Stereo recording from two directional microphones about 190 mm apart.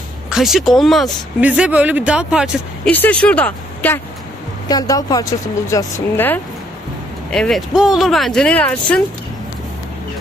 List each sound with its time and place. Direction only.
0.3 s speech: centre (ahead or behind)
2.9 s speech: 10° left (ahead or behind)
4.6 s speech: 20° left (ahead or behind)